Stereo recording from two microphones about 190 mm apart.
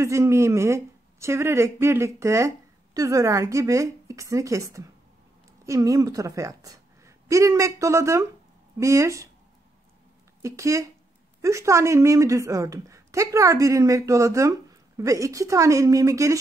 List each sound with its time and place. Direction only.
0.0 s a woman's voice: 15° right (ahead or behind)
10.4 s a woman's voice: 15° right (ahead or behind)